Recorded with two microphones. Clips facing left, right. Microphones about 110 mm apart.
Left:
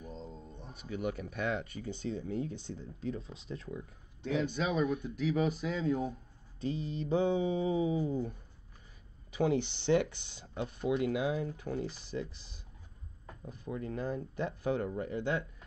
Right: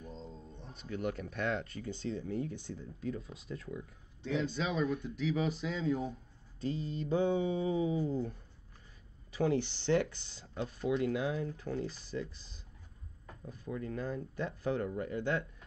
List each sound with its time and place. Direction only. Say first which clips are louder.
0.0 s speech: left 2 dB; 10° left (ahead or behind)
4.2 s speech: left 2 dB; 50° left (ahead or behind)
6.6 s speech: left 1 dB; 15° left (ahead or behind)
13.3 s speech: left 1 dB; 20° left (ahead or behind)